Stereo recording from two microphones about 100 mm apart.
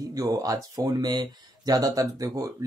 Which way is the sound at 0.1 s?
35° right (ahead or behind).